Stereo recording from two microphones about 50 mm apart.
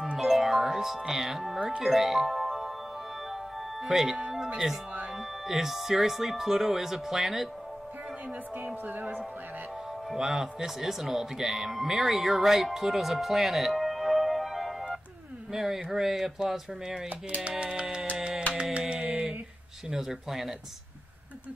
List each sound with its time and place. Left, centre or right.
0.2 s music: centre
1.8 s speech: centre
3.8 s speech: centre
5.5 s speech: centre
8.6 s speech: right
10.1 s speech: centre
17.4 s music: right
18.1 s carnatic music: centre
18.6 s a sound: right
18.9 s a sound: centre
19.9 s speech: centre